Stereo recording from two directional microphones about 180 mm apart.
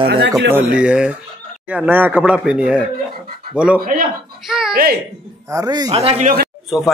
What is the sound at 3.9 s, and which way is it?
Speech, 50° right (ahead or behind).